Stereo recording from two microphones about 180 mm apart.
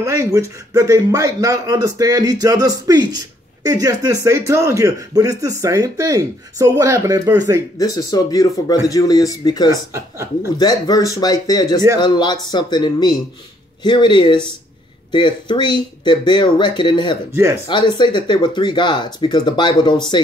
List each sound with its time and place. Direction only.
0.0 s speech: 15° right (ahead or behind)
7.8 s speech: 20° left (ahead or behind)
9.7 s speech: 15° right (ahead or behind)
10.6 s speech: 20° left (ahead or behind)
17.3 s speech: 15° right (ahead or behind)
17.6 s speech: 25° left (ahead or behind)